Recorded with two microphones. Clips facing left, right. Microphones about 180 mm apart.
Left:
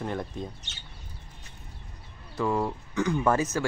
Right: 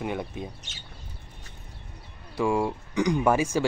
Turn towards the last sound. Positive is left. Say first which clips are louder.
# right 2 dB
turn(degrees=-10)  # may be behind; listen again after turning